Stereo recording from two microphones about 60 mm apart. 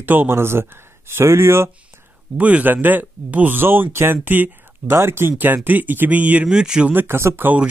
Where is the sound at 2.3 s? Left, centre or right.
Right.